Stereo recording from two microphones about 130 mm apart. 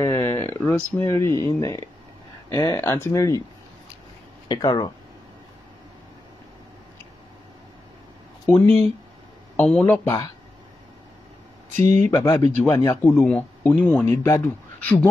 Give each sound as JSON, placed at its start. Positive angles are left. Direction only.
{"t": 0.0, "sound": "speech", "side_deg": 25}
{"t": 4.5, "sound": "speech", "side_deg": 35}
{"t": 8.5, "sound": "speech", "side_deg": 20}
{"t": 9.6, "sound": "a man's voice", "side_deg": 10}
{"t": 10.0, "sound": "speech", "side_deg": 35}
{"t": 12.1, "sound": "speech", "side_deg": 35}
{"t": 12.5, "sound": "a man's voice", "side_deg": 20}